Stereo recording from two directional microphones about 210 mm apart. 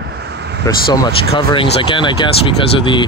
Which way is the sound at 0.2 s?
55° right (ahead or behind).